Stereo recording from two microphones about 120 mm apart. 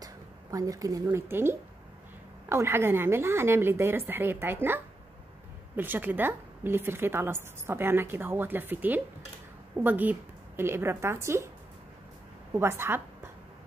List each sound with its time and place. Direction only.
0.0 s a sound: 30° right (ahead or behind)
1.3 s a woman's voice: 20° right (ahead or behind)
12.5 s a woman's voice: 20° right (ahead or behind)